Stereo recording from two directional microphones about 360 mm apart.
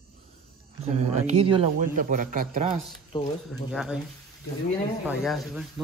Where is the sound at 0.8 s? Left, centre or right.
Centre.